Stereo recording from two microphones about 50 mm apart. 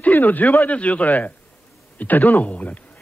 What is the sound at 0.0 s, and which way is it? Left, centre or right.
A man's voice, left.